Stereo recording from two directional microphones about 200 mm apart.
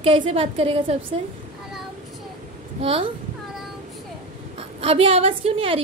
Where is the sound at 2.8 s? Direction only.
30° right (ahead or behind).